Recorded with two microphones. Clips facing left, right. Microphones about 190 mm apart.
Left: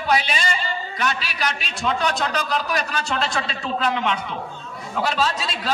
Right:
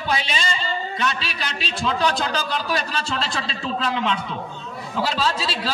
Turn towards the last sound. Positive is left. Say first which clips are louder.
# even
turn(degrees=-30)  # may be behind; listen again after turning